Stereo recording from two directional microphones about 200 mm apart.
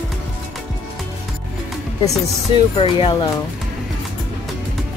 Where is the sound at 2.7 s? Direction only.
25° left (ahead or behind).